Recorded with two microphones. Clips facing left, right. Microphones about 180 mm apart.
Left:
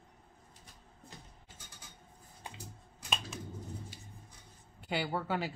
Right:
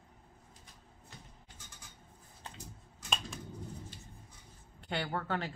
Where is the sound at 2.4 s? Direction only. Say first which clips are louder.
Left 1 dB; 15° left (ahead or behind).